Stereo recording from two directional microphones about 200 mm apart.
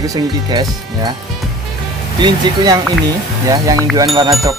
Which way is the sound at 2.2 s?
20° right (ahead or behind).